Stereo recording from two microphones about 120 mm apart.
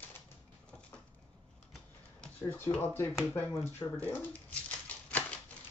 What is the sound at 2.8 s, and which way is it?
Speech, 20° left (ahead or behind).